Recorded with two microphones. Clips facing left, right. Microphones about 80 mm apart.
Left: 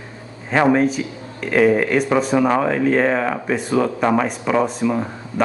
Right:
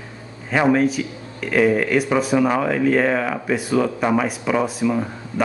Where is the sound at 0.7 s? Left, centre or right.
Centre.